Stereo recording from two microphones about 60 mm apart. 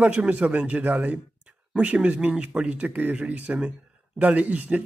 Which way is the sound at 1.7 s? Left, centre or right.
Centre.